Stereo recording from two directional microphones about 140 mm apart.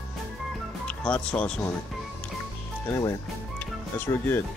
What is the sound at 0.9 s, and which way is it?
Speech, 5° left (ahead or behind).